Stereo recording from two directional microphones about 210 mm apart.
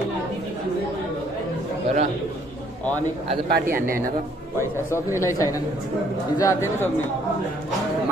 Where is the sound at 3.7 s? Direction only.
45° right (ahead or behind).